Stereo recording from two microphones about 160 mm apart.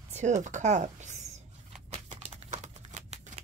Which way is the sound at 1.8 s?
45° right (ahead or behind).